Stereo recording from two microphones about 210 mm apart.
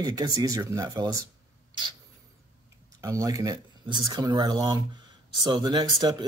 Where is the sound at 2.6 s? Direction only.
15° right (ahead or behind).